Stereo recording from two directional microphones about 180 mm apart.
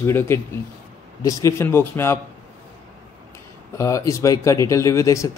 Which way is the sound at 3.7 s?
15° left (ahead or behind).